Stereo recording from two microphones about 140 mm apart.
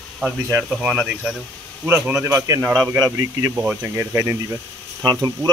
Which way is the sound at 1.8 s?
15° right (ahead or behind).